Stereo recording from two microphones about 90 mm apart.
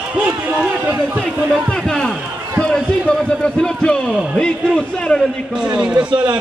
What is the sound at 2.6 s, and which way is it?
A man's voice, 10° left (ahead or behind).